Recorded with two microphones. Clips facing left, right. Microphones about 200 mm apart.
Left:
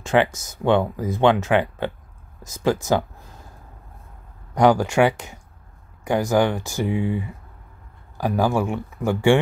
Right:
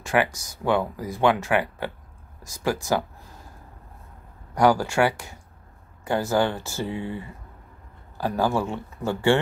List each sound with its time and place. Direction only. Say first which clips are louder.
0.0 s speech: left 4 dB; 20° left (ahead or behind)
4.6 s speech: left 3 dB; 20° left (ahead or behind)